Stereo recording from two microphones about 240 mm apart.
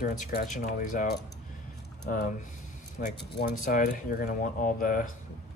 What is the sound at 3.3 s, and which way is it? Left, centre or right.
Speech, left.